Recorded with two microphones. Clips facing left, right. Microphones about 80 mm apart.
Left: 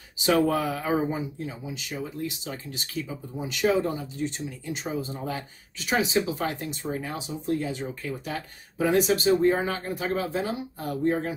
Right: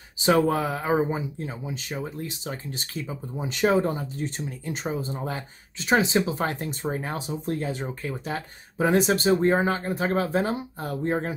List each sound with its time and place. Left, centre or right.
0.2 s speech: right